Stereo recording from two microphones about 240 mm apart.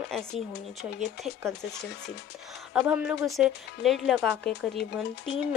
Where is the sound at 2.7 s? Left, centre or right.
Centre.